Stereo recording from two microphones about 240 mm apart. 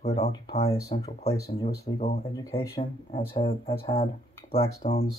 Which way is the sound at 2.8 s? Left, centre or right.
Left.